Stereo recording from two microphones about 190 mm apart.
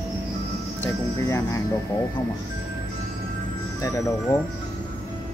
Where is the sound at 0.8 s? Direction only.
15° left (ahead or behind).